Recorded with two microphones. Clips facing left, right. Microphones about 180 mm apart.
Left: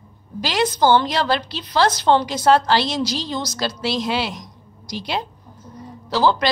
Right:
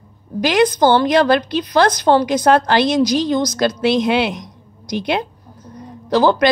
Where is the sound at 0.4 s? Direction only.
55° right (ahead or behind).